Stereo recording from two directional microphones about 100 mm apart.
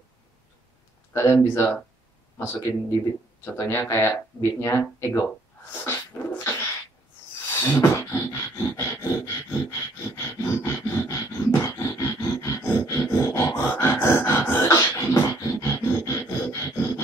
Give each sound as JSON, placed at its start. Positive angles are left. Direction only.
{"t": 1.1, "sound": "speech", "side_deg": 25}
{"t": 5.9, "sound": "dog", "side_deg": 25}
{"t": 7.8, "sound": "beatboxing", "side_deg": 30}
{"t": 9.7, "sound": "a sound", "side_deg": 25}
{"t": 13.6, "sound": "beatboxing", "side_deg": 25}